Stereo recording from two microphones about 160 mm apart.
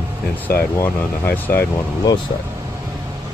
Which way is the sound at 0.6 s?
15° left (ahead or behind).